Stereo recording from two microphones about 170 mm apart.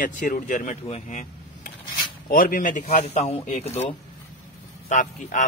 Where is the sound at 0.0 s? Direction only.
50° left (ahead or behind).